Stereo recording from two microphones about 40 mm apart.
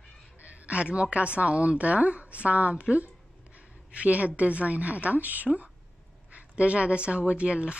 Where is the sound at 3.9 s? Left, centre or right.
Right.